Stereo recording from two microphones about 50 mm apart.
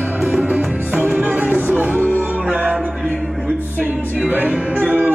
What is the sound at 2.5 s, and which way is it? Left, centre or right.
Music, right.